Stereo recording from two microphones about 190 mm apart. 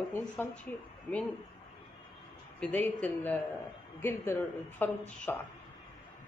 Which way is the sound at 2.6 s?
5° left (ahead or behind).